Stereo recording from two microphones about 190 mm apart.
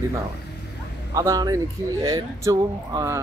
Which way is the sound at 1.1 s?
20° right (ahead or behind).